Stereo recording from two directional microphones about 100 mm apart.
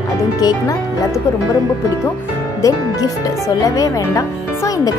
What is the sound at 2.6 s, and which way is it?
Speech, 35° left (ahead or behind).